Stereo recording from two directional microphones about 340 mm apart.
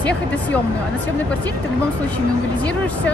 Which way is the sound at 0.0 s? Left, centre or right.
Centre.